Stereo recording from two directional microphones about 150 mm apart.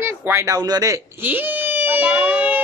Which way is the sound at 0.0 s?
15° right (ahead or behind).